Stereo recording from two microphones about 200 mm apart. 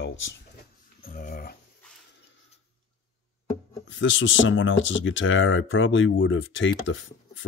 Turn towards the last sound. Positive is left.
turn(degrees=70)  # may be behind; listen again after turning